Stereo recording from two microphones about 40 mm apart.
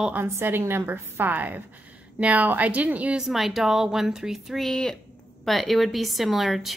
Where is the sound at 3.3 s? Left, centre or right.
Centre.